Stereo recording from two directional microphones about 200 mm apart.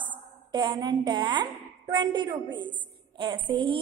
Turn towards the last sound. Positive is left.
turn(degrees=-25)  # may be behind; listen again after turning